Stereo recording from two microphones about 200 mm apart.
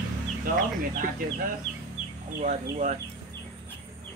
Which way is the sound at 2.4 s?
35° right (ahead or behind).